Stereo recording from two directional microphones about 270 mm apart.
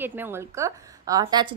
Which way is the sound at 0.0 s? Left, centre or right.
Centre.